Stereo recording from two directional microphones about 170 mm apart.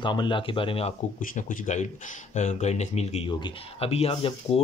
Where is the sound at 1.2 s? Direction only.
50° left (ahead or behind).